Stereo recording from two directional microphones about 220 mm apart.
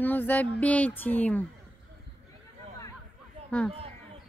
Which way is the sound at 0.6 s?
5° left (ahead or behind).